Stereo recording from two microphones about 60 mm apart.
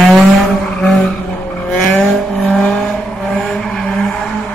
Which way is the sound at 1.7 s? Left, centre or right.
Left.